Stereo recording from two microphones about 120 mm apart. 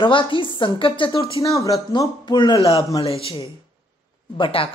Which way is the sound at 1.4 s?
25° left (ahead or behind).